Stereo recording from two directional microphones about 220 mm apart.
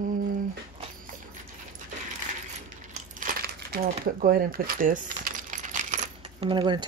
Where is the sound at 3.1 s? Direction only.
40° right (ahead or behind).